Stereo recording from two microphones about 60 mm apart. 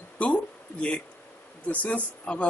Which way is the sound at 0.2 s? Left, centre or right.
Left.